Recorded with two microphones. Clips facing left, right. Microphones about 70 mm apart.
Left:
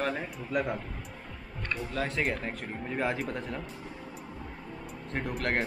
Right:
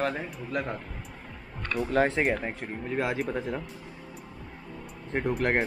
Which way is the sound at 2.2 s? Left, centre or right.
Right.